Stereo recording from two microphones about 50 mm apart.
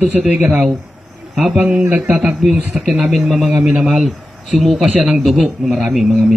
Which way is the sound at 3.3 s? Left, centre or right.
Right.